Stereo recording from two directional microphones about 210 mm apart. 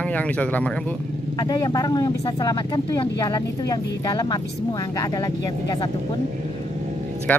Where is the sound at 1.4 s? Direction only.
20° left (ahead or behind).